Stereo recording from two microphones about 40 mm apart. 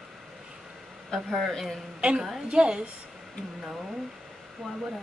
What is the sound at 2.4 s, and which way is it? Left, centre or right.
Speech, right.